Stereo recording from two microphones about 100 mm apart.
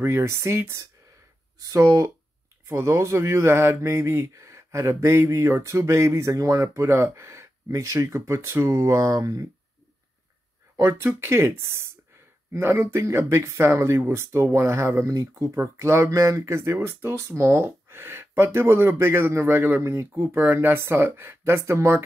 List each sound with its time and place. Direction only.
0.0 s speech: 30° right (ahead or behind)
10.8 s speech: 25° right (ahead or behind)